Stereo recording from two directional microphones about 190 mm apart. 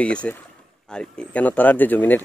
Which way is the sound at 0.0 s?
5° left (ahead or behind).